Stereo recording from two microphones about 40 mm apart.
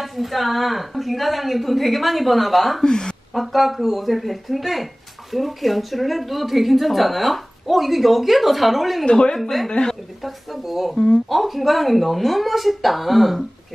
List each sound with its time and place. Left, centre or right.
0.0 s a woman's voice: centre
2.8 s speech: centre
3.3 s a woman's voice: centre
9.0 s speech: left
9.4 s a woman's voice: centre
9.7 s speech: left
10.2 s a woman's voice: centre